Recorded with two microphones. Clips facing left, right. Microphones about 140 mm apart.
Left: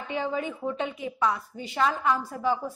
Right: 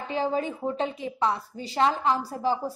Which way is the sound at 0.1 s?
35° right (ahead or behind).